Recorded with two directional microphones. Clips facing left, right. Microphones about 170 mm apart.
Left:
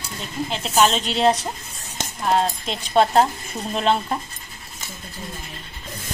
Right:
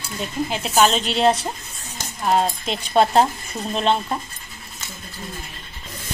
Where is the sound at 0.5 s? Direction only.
5° right (ahead or behind).